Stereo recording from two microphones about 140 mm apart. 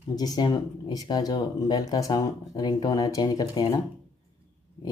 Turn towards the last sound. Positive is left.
turn(degrees=30)  # may be behind; listen again after turning